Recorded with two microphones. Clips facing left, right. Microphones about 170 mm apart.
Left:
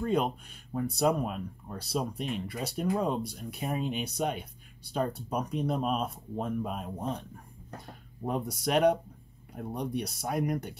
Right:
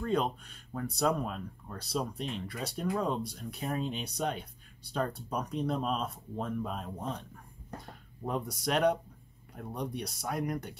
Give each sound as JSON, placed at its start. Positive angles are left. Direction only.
{"t": 0.0, "sound": "speech", "side_deg": 10}
{"t": 8.2, "sound": "speech", "side_deg": 15}